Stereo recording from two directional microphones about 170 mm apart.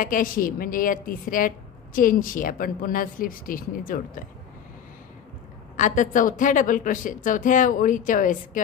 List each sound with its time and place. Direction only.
0.0 s a woman's voice: 55° left (ahead or behind)
5.8 s a woman's voice: 50° left (ahead or behind)